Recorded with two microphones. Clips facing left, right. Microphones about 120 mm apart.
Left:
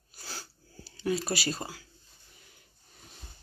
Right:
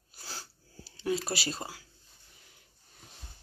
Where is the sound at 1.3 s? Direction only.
20° right (ahead or behind).